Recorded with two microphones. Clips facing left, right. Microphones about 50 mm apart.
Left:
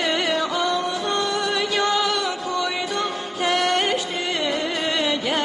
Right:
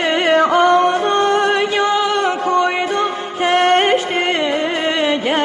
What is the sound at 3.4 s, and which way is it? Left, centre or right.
Music, right.